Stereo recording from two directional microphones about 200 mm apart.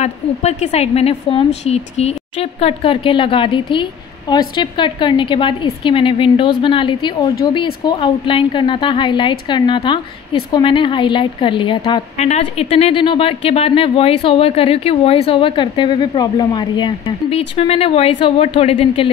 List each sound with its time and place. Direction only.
0.0 s a woman's voice: 35° left (ahead or behind)